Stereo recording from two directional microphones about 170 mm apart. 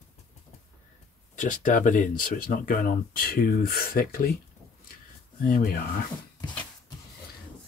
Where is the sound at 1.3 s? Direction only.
50° left (ahead or behind).